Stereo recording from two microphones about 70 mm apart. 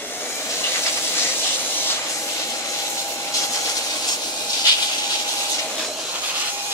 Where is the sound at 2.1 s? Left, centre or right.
Left.